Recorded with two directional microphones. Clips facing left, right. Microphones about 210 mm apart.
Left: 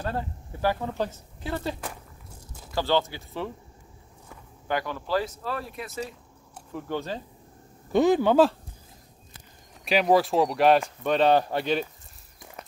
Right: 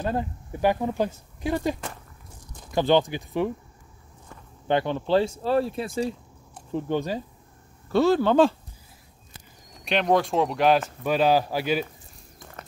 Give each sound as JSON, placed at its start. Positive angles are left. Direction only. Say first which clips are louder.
{"t": 0.0, "sound": "speech", "louder": "right 4 dB", "side_deg": -15}
{"t": 4.6, "sound": "speech", "louder": "right 6 dB", "side_deg": -25}
{"t": 6.7, "sound": "speech", "louder": "right 5 dB", "side_deg": -20}
{"t": 7.9, "sound": "speech", "louder": "even", "side_deg": 15}
{"t": 9.8, "sound": "speech", "louder": "left 1 dB", "side_deg": 5}
{"t": 12.4, "sound": "a sound", "louder": "even", "side_deg": 10}